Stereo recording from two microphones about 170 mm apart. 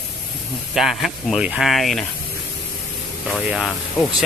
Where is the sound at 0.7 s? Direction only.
Centre (ahead or behind).